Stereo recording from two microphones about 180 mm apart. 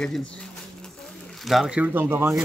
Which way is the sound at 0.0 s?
5° left (ahead or behind).